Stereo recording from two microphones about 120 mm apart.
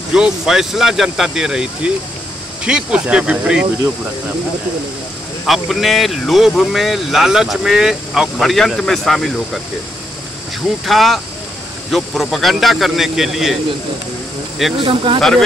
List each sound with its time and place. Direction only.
0.1 s speech: 5° right (ahead or behind)
5.5 s speech: centre (ahead or behind)
10.9 s speech: centre (ahead or behind)
14.8 s speech: 50° right (ahead or behind)
15.1 s speech: 5° left (ahead or behind)